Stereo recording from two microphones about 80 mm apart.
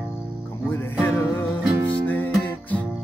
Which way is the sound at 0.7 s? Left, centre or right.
Left.